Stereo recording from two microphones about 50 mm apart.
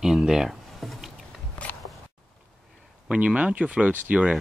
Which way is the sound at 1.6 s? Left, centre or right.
Left.